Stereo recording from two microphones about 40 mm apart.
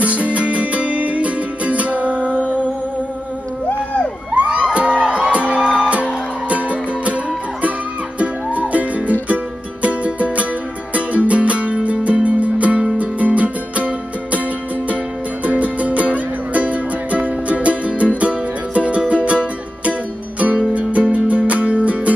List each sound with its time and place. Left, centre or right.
0.0 s music: right
3.6 s a sound: left
4.3 s music: right
8.2 s music: right
15.4 s music: right